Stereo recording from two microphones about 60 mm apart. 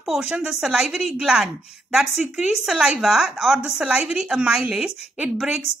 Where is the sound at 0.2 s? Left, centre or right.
Centre.